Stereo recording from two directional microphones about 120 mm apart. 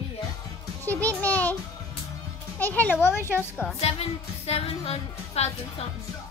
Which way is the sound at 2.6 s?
15° left (ahead or behind).